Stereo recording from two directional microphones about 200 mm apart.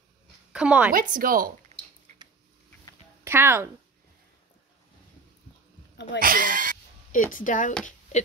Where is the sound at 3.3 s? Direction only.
10° right (ahead or behind).